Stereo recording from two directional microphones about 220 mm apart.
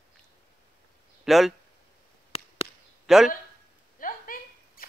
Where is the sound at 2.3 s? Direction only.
25° left (ahead or behind).